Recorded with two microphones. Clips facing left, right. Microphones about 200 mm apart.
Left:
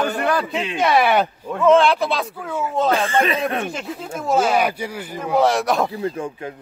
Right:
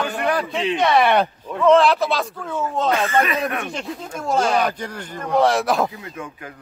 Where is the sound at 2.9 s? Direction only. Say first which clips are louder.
Left 1 dB; 30° left (ahead or behind).